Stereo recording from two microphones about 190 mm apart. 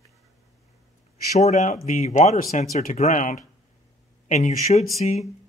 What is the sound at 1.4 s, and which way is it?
Speech, 40° left (ahead or behind).